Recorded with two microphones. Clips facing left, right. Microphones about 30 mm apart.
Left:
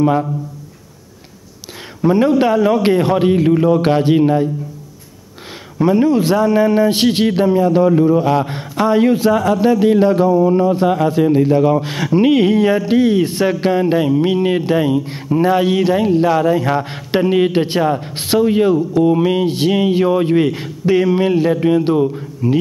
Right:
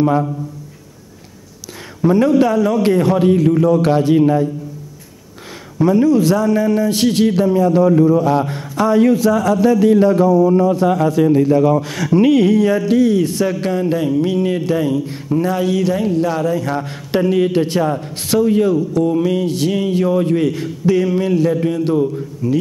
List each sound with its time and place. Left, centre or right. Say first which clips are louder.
2.0 s a man's voice: even; left
5.8 s a man's voice: even; left